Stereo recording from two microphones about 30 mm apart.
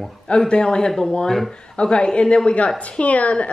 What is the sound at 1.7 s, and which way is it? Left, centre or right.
A woman's voice, left.